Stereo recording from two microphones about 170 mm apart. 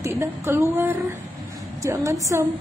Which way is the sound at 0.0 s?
15° right (ahead or behind).